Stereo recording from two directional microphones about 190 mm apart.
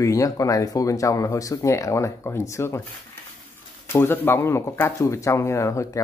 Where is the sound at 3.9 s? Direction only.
10° left (ahead or behind).